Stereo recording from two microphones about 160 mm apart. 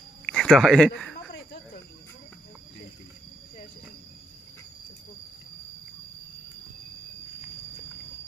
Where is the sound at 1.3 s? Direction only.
90° left.